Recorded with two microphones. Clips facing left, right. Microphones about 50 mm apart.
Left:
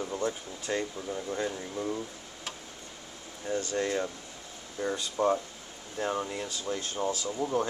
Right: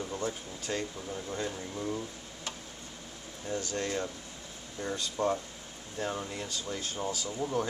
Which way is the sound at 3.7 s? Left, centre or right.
Centre.